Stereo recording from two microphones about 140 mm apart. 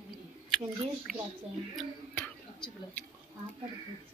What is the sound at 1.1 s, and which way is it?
Speech, centre (ahead or behind).